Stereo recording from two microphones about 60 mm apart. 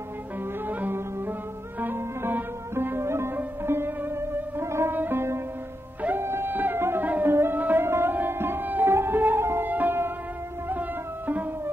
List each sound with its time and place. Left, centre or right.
0.7 s music: right
4.9 s sitar: right
6.0 s music: right
9.7 s music: right